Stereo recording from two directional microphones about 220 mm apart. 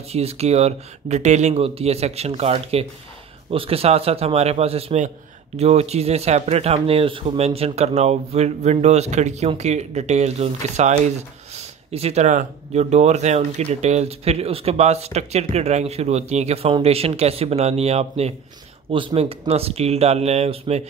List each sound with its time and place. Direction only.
0.1 s speech: 30° right (ahead or behind)